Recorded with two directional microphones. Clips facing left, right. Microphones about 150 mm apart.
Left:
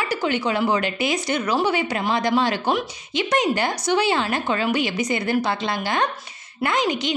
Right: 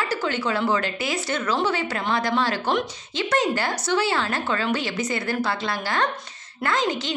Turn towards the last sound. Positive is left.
turn(degrees=15)  # may be behind; listen again after turning